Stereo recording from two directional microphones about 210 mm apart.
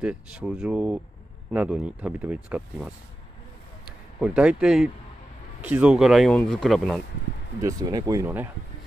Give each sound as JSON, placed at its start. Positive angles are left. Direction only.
{"t": 0.0, "sound": "speech", "side_deg": -5}
{"t": 4.4, "sound": "speech", "side_deg": -5}
{"t": 7.6, "sound": "speech", "side_deg": -15}